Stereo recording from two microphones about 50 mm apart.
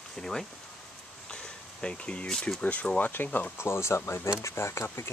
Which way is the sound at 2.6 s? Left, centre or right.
Left.